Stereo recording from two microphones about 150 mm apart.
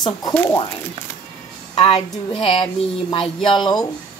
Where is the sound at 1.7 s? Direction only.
40° left (ahead or behind).